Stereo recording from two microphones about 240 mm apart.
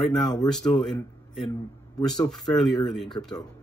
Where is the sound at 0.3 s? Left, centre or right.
Centre.